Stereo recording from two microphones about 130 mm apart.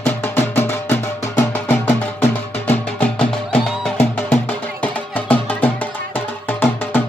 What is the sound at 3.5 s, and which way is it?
Music, 10° left (ahead or behind).